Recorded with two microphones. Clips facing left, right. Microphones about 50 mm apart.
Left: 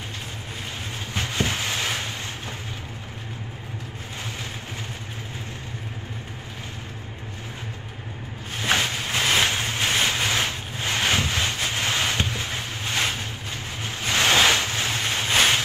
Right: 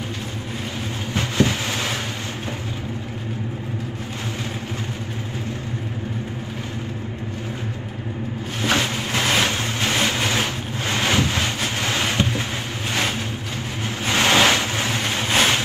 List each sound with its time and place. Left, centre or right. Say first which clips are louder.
1.1 s vehicle: right 5 dB; right
8.7 s a sound: right 1 dB; right
9.5 s vehicle: right 2 dB; left
9.8 s vehicle: right 2 dB; right